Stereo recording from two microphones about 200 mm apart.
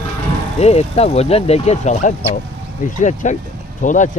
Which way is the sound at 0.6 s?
30° left (ahead or behind).